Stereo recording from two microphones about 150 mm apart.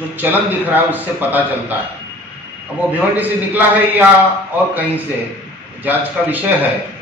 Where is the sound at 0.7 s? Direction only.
10° right (ahead or behind).